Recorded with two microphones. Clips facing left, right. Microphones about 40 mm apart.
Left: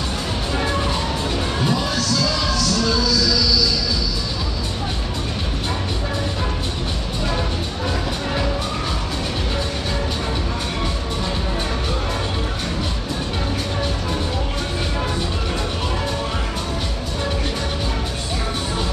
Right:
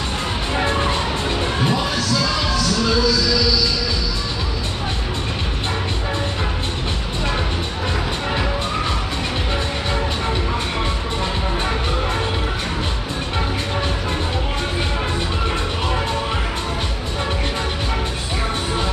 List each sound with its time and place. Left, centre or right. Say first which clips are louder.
0.6 s music: right 3 dB; right